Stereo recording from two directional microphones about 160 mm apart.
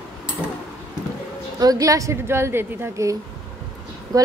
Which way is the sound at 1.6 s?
20° right (ahead or behind).